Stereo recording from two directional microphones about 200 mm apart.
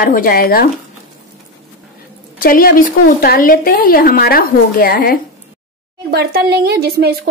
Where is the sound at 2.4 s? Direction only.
45° left (ahead or behind).